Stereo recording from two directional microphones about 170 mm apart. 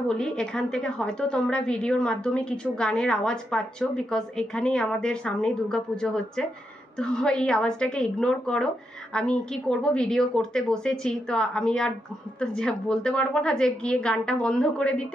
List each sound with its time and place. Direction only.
0.1 s a woman's voice: 5° left (ahead or behind)